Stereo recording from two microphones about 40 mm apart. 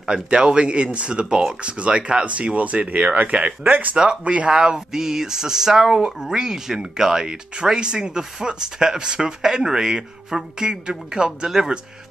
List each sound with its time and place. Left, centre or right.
0.0 s speech: centre; by 3.9 s right
3.9 s speech: right
4.2 s speech: right
4.6 s speech: centre